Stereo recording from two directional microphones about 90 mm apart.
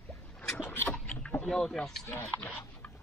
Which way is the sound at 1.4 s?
5° left (ahead or behind).